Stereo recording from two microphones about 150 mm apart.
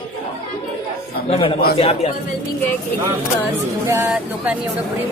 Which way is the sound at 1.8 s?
40° left (ahead or behind).